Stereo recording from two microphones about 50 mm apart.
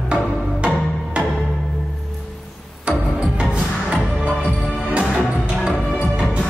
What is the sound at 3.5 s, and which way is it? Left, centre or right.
Music, centre.